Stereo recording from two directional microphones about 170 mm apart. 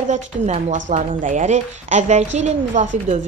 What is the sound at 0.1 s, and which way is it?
A woman's voice, 45° right (ahead or behind).